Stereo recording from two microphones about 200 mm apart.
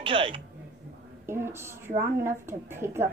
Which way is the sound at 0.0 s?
25° right (ahead or behind).